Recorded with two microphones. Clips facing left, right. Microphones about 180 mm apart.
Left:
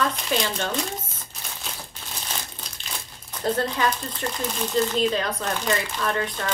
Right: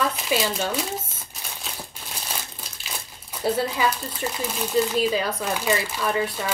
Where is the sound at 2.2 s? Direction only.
5° right (ahead or behind).